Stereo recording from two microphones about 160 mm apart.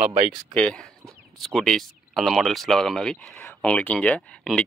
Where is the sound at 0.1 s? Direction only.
30° right (ahead or behind).